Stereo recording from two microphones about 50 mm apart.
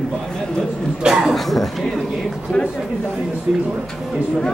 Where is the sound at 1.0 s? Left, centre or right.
Centre.